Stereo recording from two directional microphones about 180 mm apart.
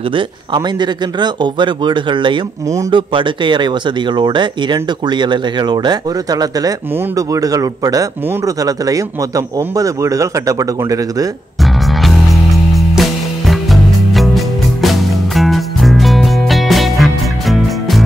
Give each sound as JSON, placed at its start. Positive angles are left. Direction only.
{"t": 0.1, "sound": "speech", "side_deg": -25}
{"t": 11.6, "sound": "music", "side_deg": 0}